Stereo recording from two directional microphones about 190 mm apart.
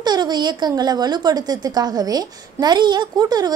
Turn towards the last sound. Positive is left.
turn(degrees=-20)  # may be behind; listen again after turning